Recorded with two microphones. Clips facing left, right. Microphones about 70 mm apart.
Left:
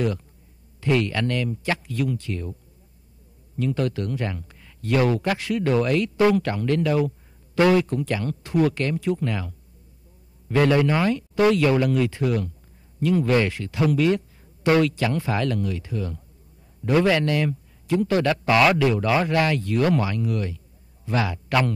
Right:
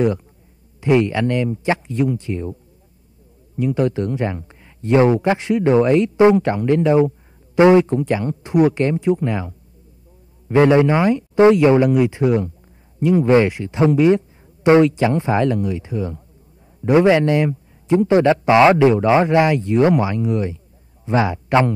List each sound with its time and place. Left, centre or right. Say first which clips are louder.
0.7 s speech: right 6 dB; right
3.5 s speech: right 6 dB; centre